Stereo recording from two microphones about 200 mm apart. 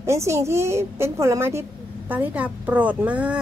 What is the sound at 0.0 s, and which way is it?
A woman's voice, 15° right (ahead or behind).